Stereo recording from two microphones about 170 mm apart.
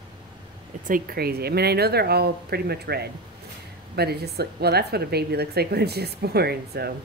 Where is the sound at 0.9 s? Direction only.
65° right (ahead or behind).